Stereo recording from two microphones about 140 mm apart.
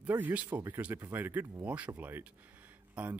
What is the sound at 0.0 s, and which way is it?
A man's voice, 10° right (ahead or behind).